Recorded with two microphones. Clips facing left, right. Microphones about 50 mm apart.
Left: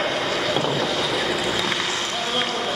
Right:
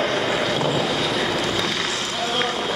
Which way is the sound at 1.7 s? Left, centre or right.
Left.